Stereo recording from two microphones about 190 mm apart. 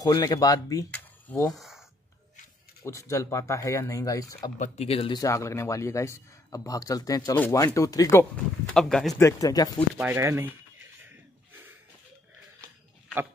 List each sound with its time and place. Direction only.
0.0 s speech: 20° left (ahead or behind)
1.5 s speech: centre (ahead or behind)
2.8 s speech: 15° left (ahead or behind)
4.6 s speech: 35° left (ahead or behind); by 8.3 s 15° left (ahead or behind)
8.7 s speech: centre (ahead or behind)
9.2 s speech: 20° left (ahead or behind)
9.9 s speech: 10° right (ahead or behind)